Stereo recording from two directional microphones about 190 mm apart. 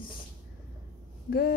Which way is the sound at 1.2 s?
55° left (ahead or behind).